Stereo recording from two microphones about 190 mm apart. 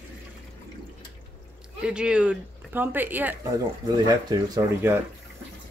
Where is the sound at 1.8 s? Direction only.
5° right (ahead or behind).